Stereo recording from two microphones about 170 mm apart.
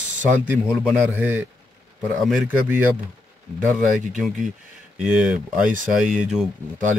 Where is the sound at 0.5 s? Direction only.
10° right (ahead or behind).